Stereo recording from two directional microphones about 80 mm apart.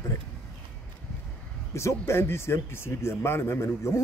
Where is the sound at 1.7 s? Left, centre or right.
Left.